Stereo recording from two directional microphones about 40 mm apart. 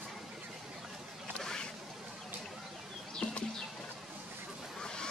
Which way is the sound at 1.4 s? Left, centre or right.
Centre.